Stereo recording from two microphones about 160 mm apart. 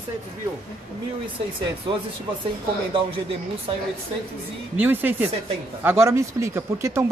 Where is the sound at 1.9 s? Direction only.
30° right (ahead or behind).